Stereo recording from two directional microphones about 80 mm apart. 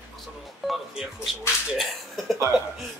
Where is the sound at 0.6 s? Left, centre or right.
Centre.